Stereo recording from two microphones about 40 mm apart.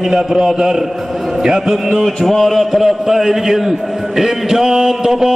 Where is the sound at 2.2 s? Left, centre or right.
Centre.